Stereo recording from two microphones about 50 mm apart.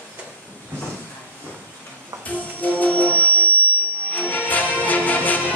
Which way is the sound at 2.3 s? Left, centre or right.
Left.